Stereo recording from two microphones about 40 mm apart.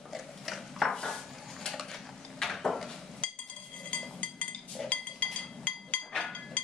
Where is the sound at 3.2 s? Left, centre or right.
Left.